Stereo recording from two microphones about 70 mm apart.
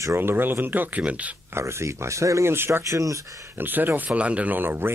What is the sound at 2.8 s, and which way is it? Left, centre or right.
Speech, right.